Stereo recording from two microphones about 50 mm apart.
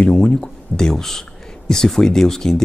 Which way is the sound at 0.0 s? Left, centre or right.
Left.